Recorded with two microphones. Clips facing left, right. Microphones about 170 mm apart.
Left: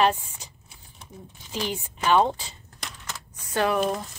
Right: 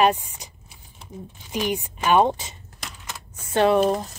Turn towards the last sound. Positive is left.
turn(degrees=-40)  # may be behind; listen again after turning